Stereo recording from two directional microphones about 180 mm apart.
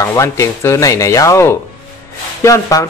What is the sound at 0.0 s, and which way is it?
A man's voice, 15° left (ahead or behind).